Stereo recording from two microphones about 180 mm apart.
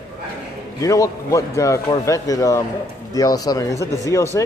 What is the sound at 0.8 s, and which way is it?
A man's voice, 20° left (ahead or behind).